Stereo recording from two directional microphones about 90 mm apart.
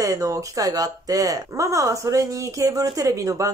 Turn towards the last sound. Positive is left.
turn(degrees=-35)  # may be behind; listen again after turning